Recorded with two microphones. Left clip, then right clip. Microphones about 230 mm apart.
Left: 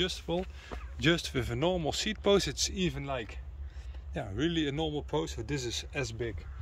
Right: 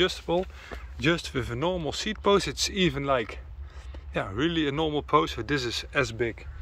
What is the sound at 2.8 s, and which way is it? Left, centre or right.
Speech, centre.